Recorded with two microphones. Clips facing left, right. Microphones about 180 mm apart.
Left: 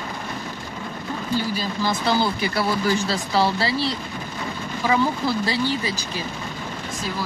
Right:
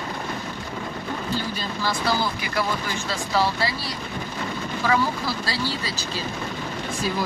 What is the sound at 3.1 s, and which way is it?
Speech, 30° left (ahead or behind).